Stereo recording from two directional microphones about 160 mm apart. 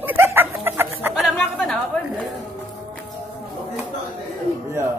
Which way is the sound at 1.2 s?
Centre (ahead or behind).